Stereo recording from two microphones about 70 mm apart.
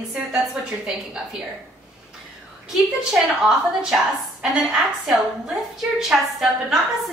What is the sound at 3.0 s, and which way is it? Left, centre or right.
A woman's voice, centre.